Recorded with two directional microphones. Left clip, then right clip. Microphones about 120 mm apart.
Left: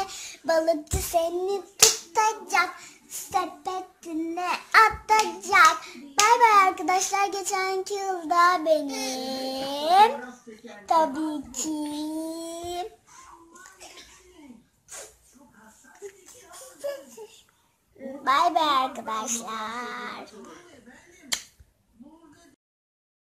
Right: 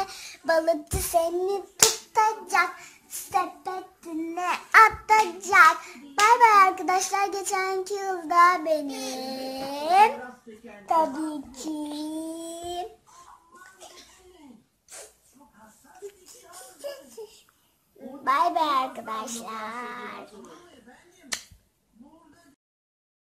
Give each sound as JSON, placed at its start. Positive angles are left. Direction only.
{"t": 0.0, "sound": "a sound", "side_deg": 0}
{"t": 1.8, "sound": "hands", "side_deg": -5}
{"t": 3.6, "sound": "child singing", "side_deg": 15}
{"t": 4.1, "sound": "a child's voice", "side_deg": 0}
{"t": 4.6, "sound": "child singing", "side_deg": -5}
{"t": 6.1, "sound": "a child's voice", "side_deg": 0}
{"t": 8.8, "sound": "a child's voice", "side_deg": 50}
{"t": 9.2, "sound": "a child's voice", "side_deg": 0}
{"t": 10.5, "sound": "speech", "side_deg": -55}
{"t": 10.9, "sound": "a child's voice", "side_deg": 0}
{"t": 16.5, "sound": "child singing", "side_deg": 45}
{"t": 18.2, "sound": "a child's voice", "side_deg": 0}
{"t": 19.4, "sound": "child singing", "side_deg": -10}